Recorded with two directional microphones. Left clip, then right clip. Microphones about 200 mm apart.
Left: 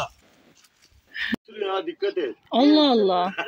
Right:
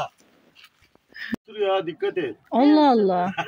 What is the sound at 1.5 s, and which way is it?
Speech, 55° right (ahead or behind).